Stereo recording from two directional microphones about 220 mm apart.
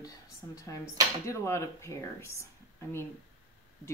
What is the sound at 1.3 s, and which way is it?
Speech, 15° left (ahead or behind).